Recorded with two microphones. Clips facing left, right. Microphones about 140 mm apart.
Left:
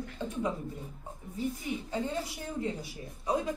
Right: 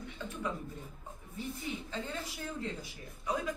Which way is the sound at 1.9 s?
15° left (ahead or behind).